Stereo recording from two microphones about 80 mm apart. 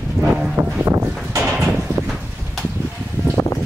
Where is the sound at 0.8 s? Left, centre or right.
Right.